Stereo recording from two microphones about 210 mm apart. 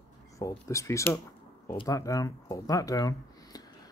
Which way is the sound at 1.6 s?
20° left (ahead or behind).